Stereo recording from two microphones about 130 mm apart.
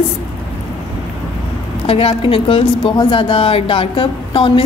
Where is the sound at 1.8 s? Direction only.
45° left (ahead or behind).